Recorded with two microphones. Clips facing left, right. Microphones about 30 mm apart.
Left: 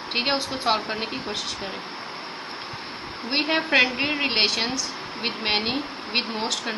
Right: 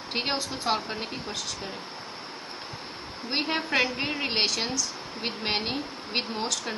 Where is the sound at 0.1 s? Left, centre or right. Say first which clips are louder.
Left 5 dB; left.